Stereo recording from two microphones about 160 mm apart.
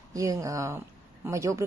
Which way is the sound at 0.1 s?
20° right (ahead or behind).